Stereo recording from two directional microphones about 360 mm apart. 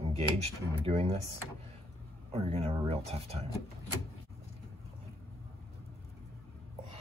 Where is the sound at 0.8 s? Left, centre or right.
Centre.